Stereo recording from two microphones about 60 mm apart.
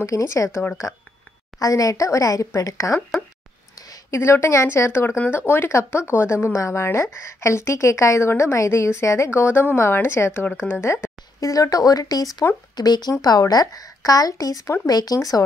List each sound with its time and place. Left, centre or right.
0.0 s speech: left
0.9 s a woman's voice: left
3.7 s a sound: left
4.2 s speech: left
10.9 s speech: left
15.1 s speech: left